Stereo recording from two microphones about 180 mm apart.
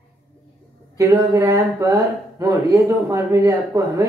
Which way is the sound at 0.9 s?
20° right (ahead or behind).